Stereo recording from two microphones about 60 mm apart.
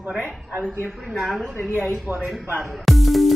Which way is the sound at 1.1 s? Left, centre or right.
Centre.